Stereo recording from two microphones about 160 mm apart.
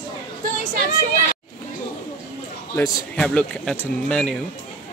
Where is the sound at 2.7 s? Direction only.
10° left (ahead or behind).